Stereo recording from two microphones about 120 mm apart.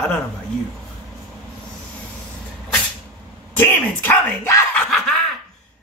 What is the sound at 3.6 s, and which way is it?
Music, 15° left (ahead or behind).